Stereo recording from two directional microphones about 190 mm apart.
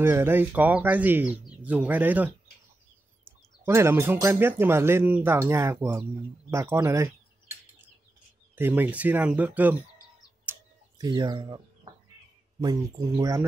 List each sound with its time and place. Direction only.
0.0 s speech: 10° right (ahead or behind)
3.6 s speech: 15° right (ahead or behind)
8.5 s speech: 10° right (ahead or behind)
10.5 s tick: 10° right (ahead or behind)
11.0 s speech: 20° right (ahead or behind)